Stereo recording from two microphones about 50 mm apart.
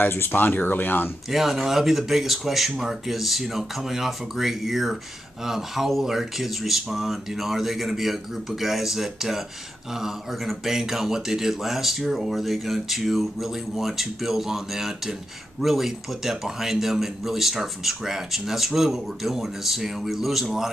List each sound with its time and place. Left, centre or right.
0.0 s speech: left
1.3 s speech: centre